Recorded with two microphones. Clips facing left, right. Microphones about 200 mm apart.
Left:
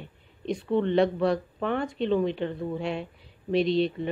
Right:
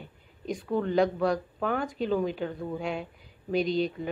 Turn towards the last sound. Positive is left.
turn(degrees=0)  # may be behind; listen again after turning